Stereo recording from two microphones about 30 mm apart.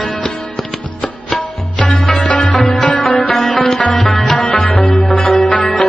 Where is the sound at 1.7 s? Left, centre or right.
Left.